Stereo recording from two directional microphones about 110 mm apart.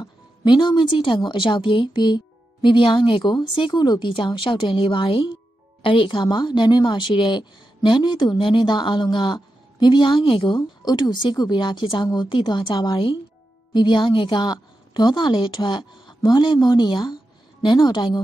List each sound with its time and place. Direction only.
0.0 s a woman's voice: 40° left (ahead or behind)
10.9 s a woman's voice: 40° left (ahead or behind)